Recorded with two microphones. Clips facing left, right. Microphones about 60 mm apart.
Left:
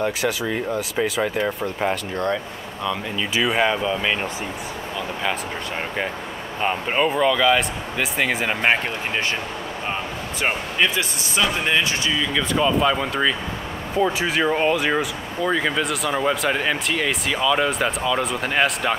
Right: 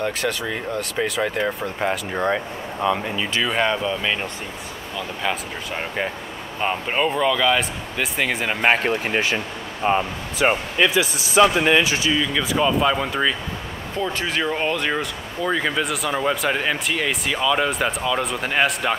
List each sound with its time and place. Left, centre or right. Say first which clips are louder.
0.0 s speech: left 1 dB; centre
2.1 s speech: right 2 dB; centre
3.3 s speech: left 2 dB; centre
6.6 s speech: left 1 dB; centre
11.3 s speech: right 6 dB; centre
12.2 s speech: even; centre
13.9 s speech: left 4 dB; centre